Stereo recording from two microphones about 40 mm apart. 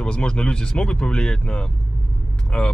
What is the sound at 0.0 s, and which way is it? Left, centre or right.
Speech, left.